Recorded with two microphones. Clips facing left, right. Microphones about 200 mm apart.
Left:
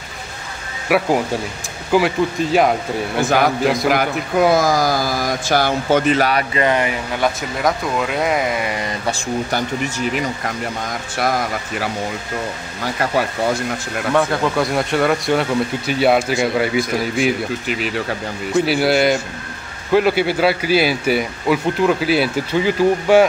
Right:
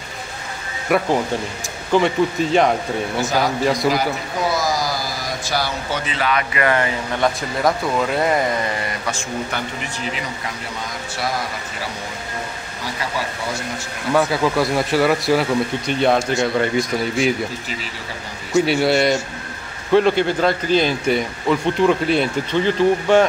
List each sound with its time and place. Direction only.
0.8 s speech: 5° left (ahead or behind)
3.2 s speech: 55° left (ahead or behind)
3.6 s speech: centre (ahead or behind)
3.9 s speech: 55° left (ahead or behind)
6.5 s speech: 20° left (ahead or behind)
7.2 s speech: 5° left (ahead or behind)
9.0 s speech: 35° left (ahead or behind)
10.1 s speech: 50° left (ahead or behind)
14.1 s speech: 5° right (ahead or behind)
17.6 s speech: 65° left (ahead or behind)
18.7 s speech: centre (ahead or behind)